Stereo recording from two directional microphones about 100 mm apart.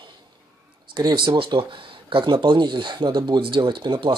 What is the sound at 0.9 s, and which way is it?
Speech, 45° right (ahead or behind).